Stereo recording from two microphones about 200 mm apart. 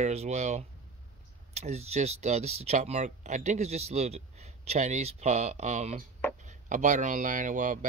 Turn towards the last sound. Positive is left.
turn(degrees=-40)  # may be behind; listen again after turning